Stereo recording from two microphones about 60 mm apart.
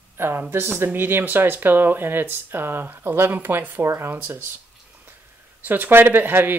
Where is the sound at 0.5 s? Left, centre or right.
Right.